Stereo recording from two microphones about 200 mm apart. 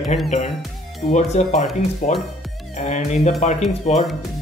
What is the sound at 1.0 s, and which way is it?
Speech, 35° left (ahead or behind).